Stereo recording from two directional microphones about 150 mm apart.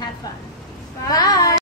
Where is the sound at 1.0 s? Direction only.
25° left (ahead or behind).